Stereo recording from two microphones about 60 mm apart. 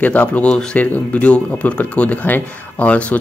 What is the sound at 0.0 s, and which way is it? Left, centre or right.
Speech, left.